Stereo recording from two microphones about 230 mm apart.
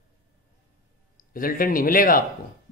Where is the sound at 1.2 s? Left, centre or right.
Left.